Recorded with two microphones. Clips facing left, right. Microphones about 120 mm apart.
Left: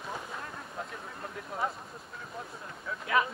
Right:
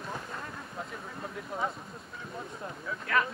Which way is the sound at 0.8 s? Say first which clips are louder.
Right 1 dB; centre (ahead or behind).